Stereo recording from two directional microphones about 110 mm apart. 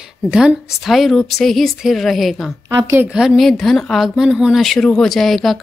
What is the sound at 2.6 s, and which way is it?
Speech, 25° right (ahead or behind).